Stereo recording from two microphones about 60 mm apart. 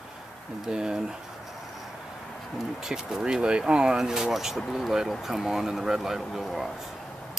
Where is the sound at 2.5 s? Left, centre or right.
Centre.